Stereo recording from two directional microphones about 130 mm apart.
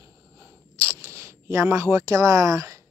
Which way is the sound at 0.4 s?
20° right (ahead or behind).